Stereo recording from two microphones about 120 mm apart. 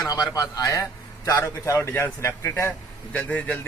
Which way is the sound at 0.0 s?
30° left (ahead or behind).